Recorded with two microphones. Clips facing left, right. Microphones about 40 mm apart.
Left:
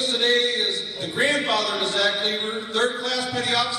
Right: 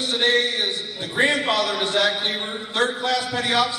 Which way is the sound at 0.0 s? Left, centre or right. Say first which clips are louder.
Right 1 dB; right.